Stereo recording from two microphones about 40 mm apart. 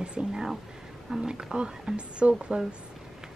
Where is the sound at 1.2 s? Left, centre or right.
Centre.